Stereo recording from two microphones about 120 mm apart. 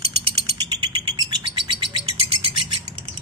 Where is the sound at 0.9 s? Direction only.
40° right (ahead or behind).